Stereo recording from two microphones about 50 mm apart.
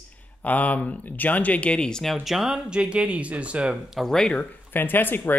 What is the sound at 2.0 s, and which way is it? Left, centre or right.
Speech, centre.